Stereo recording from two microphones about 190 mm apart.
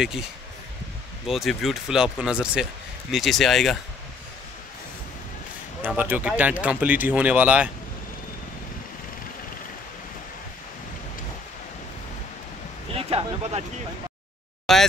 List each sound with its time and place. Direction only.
1.2 s speech: centre (ahead or behind)
5.8 s speech: 10° right (ahead or behind)
12.9 s a sound: 30° right (ahead or behind)
14.7 s speech: centre (ahead or behind)